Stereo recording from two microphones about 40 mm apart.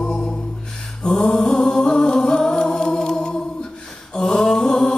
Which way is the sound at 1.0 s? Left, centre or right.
Centre.